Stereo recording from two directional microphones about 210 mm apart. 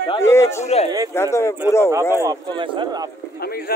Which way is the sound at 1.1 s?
10° left (ahead or behind).